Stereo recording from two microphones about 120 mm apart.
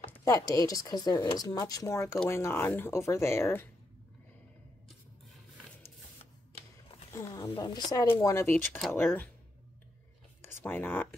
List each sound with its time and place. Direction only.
0.2 s speech: 30° left (ahead or behind)
7.1 s a woman's voice: 30° left (ahead or behind)
10.6 s speech: 15° left (ahead or behind)